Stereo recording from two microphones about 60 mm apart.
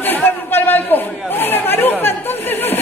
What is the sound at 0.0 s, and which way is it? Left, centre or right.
Chatter, left.